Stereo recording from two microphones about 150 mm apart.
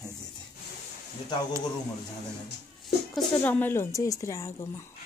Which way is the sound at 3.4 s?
10° left (ahead or behind).